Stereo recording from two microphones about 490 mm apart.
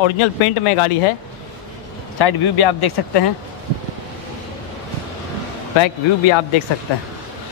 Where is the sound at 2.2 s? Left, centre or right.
Left.